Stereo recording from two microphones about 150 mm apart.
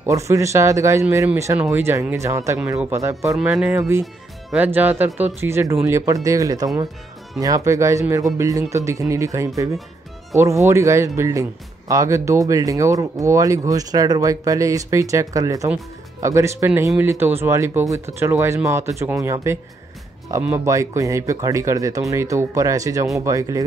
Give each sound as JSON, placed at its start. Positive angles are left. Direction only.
{"t": 0.0, "sound": "speech", "side_deg": -20}
{"t": 3.3, "sound": "speech", "side_deg": -5}
{"t": 4.0, "sound": "music", "side_deg": 0}
{"t": 4.6, "sound": "speech", "side_deg": -15}